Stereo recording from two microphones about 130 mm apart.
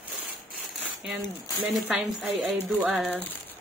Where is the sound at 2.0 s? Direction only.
5° right (ahead or behind).